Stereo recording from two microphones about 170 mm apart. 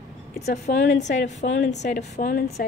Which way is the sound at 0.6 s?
85° left.